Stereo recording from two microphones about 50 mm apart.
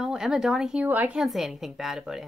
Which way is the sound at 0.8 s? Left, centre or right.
Right.